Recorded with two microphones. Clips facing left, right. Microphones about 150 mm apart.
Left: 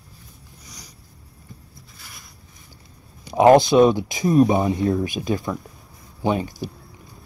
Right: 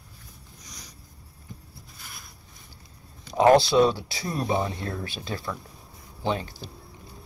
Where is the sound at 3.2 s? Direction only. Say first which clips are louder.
Left 5 dB; 15° left (ahead or behind).